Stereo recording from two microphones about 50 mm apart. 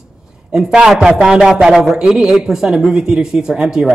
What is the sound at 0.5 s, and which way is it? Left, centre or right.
A man's voice, centre.